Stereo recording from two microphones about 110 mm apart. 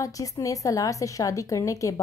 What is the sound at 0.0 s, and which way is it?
A woman's voice, 30° left (ahead or behind).